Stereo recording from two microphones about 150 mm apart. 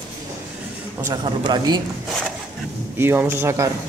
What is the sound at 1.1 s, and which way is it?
Speech, 30° right (ahead or behind).